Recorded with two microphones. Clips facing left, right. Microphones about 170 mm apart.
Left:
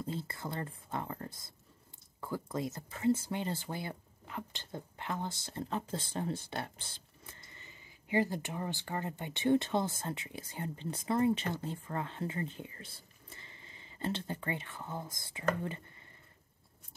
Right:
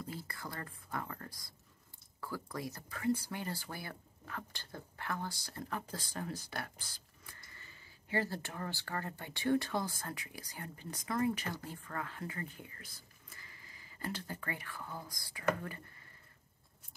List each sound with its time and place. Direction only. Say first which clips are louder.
0.0 s speech: left 5 dB; 25° left (ahead or behind)